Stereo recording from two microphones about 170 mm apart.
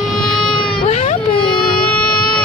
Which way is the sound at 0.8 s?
40° left (ahead or behind).